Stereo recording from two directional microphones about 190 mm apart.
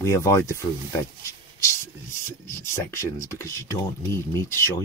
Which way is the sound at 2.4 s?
15° left (ahead or behind).